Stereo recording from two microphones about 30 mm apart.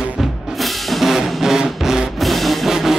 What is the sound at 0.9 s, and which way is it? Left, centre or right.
Music, centre.